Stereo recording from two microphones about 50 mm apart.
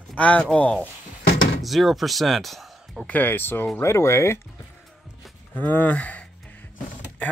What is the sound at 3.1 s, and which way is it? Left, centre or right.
Speech, left.